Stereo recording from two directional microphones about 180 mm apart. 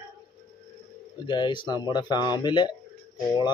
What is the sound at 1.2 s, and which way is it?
Chicken, 25° left (ahead or behind).